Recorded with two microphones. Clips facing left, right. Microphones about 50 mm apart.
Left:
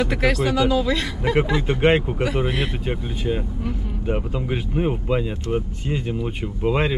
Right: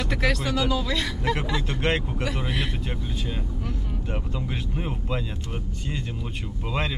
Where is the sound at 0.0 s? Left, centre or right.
Centre.